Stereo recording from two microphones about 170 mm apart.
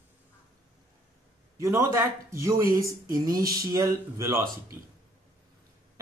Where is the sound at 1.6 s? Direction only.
15° right (ahead or behind).